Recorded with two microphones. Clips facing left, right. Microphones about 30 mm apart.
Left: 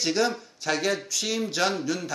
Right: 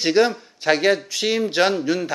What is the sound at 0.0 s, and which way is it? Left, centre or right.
Speech, right.